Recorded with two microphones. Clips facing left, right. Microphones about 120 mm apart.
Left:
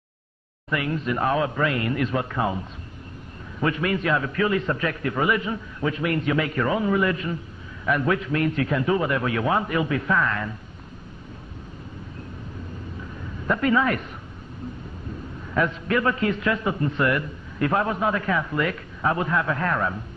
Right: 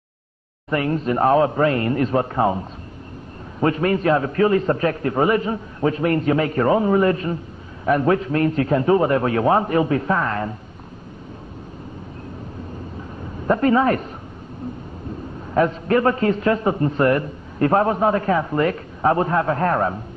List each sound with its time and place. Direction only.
0.7 s a man's voice: 40° right (ahead or behind)
3.6 s a man's voice: 40° right (ahead or behind)
13.5 s a man's voice: 35° right (ahead or behind)
15.5 s a man's voice: 40° right (ahead or behind)